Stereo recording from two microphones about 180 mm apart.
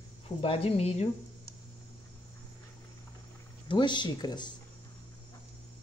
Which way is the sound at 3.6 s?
25° left (ahead or behind).